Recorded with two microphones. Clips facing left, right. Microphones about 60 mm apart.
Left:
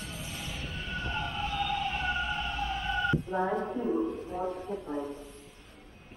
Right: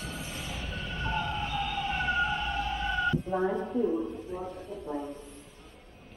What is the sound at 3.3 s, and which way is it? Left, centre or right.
Speech, centre.